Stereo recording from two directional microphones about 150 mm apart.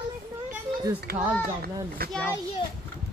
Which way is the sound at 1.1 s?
90° right.